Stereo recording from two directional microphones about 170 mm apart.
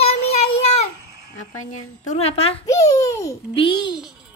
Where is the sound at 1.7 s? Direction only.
40° left (ahead or behind).